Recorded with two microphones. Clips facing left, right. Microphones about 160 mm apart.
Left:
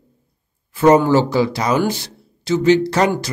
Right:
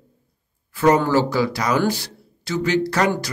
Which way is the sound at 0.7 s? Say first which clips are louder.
Left 4 dB; 25° left (ahead or behind).